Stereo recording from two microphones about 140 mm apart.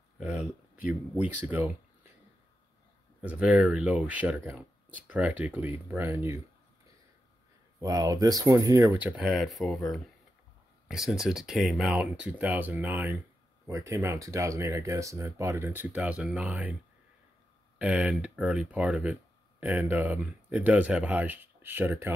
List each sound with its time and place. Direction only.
0.2 s speech: 5° right (ahead or behind)
3.2 s speech: 10° right (ahead or behind)
7.8 s speech: 25° right (ahead or behind); by 16.7 s 10° right (ahead or behind)
17.7 s speech: 5° right (ahead or behind)